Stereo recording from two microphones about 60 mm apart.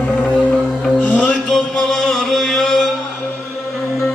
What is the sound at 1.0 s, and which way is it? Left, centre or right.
Music, left.